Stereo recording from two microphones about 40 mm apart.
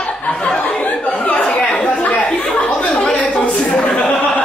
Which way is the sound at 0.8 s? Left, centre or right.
Left.